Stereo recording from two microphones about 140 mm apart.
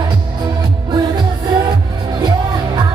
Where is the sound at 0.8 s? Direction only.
30° right (ahead or behind).